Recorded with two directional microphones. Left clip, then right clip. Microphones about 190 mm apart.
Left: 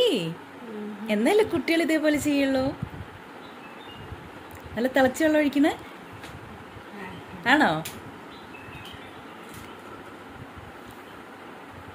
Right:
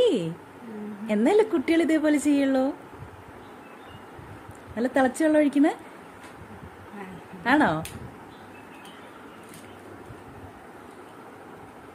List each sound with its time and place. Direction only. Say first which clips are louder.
0.0 s a sound: right 1 dB; 15° right (ahead or behind)
1.0 s a woman's voice: right 1 dB; 15° right (ahead or behind)
4.7 s a woman's voice: left 1 dB; 10° right (ahead or behind)
7.4 s a woman's voice: left 1 dB; 10° right (ahead or behind)